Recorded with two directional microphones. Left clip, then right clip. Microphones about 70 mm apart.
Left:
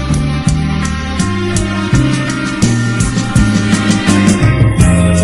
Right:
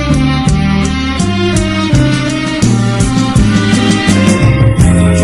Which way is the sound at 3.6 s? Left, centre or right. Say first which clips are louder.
Right 3 dB; left.